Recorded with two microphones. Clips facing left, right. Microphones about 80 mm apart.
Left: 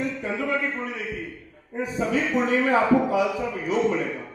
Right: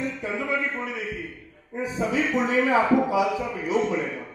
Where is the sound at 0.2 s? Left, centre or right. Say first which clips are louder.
Left 1 dB; left.